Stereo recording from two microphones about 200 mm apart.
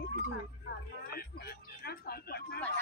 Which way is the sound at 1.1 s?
50° left (ahead or behind).